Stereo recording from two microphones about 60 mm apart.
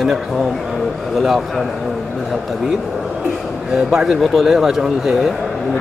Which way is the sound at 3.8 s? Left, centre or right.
Centre.